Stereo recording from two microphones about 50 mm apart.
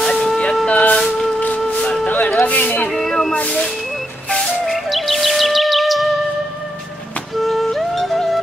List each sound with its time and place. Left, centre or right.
0.0 s a sound: centre
0.7 s a sound: left
1.0 s music: centre
2.0 s music: left
2.4 s a sound: left
2.9 s music: centre
3.3 s music: left
4.6 s music: centre
7.3 s music: centre